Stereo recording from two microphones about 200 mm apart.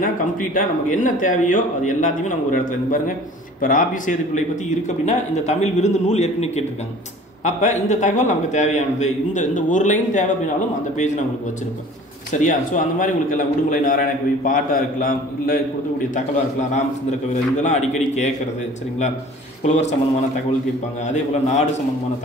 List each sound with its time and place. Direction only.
0.0 s speech: 40° left (ahead or behind)
12.3 s a man's voice: 40° left (ahead or behind)
17.6 s speech: 35° left (ahead or behind)
19.6 s speech: 35° left (ahead or behind)